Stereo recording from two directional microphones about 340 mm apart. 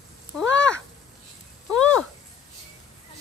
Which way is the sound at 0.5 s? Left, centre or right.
Left.